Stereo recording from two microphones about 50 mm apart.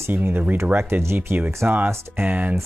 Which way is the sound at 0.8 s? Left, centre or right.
Right.